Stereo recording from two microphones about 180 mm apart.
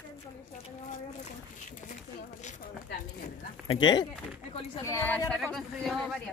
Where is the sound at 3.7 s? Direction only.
25° left (ahead or behind).